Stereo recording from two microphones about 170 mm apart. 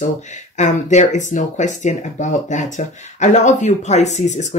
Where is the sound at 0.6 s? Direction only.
45° left (ahead or behind).